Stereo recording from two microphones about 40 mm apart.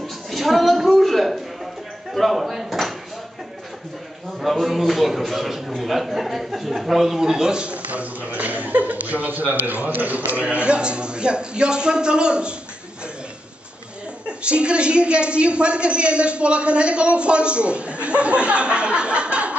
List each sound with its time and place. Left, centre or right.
0.0 s a sound: centre
2.1 s a man's voice: centre
4.4 s a man's voice: centre; by 7.7 s right
7.7 s a man's voice: right
14.2 s a woman's voice: right